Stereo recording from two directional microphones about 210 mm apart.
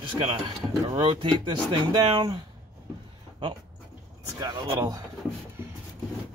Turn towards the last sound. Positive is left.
turn(degrees=-20)  # may be behind; listen again after turning